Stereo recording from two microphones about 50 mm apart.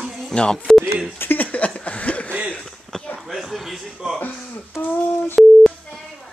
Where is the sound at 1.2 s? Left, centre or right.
Left.